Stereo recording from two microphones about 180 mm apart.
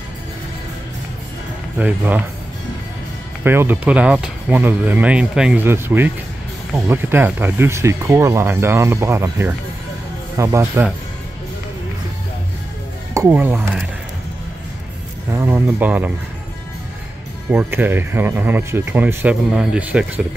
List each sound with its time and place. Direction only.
1.8 s speech: 10° right (ahead or behind)
3.4 s speech: 10° right (ahead or behind)
13.1 s speech: 15° right (ahead or behind)
15.3 s speech: 10° right (ahead or behind)
17.5 s speech: 10° right (ahead or behind)